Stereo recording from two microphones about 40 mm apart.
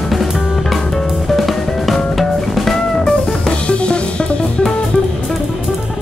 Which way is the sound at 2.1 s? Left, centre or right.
Centre.